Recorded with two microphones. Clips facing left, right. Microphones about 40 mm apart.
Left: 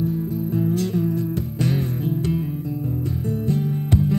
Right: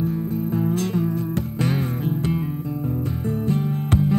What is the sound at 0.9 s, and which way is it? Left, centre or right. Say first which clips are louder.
Music: left 1 dB; right.